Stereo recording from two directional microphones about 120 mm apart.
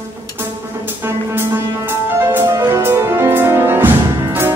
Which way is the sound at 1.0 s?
20° right (ahead or behind).